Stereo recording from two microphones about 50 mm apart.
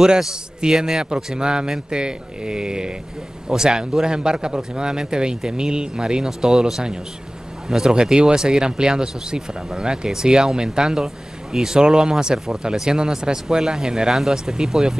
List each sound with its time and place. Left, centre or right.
0.2 s speech: centre